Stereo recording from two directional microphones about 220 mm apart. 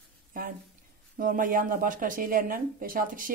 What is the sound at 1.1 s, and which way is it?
Speech, 40° right (ahead or behind).